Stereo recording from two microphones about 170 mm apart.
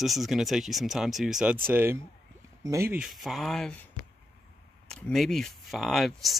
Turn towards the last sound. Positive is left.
turn(degrees=0)  # may be behind; listen again after turning